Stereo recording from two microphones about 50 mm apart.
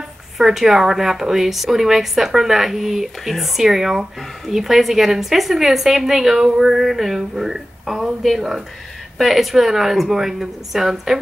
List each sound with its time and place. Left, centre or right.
0.4 s a woman's voice: centre